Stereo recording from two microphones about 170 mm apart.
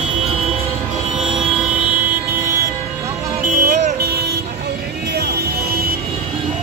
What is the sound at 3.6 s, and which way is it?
Vehicle, 45° right (ahead or behind).